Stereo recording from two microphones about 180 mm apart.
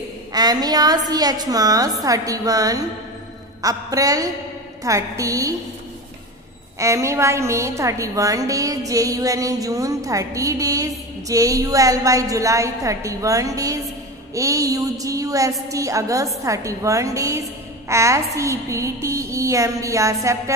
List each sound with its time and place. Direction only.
0.3 s a woman's voice: 20° right (ahead or behind)
6.8 s a woman's voice: 15° right (ahead or behind)